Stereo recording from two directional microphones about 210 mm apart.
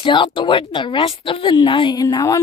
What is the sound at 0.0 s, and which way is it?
Speech, 25° left (ahead or behind).